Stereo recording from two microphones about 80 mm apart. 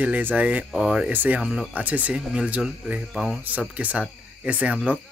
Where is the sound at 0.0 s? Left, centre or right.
Centre.